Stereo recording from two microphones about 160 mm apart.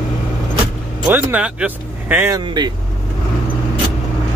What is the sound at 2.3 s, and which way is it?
Speech, 25° right (ahead or behind).